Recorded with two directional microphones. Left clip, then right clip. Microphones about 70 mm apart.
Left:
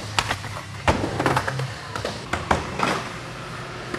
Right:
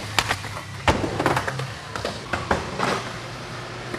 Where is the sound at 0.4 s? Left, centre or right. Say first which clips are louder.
Even; centre.